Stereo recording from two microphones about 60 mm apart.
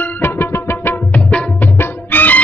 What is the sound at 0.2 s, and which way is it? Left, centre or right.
Music, left.